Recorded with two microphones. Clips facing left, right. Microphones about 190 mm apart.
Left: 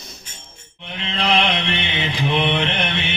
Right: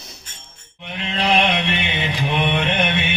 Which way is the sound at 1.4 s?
10° right (ahead or behind).